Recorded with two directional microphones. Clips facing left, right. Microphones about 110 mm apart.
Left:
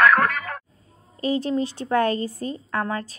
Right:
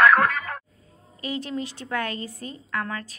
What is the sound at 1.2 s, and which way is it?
Speech, 35° left (ahead or behind).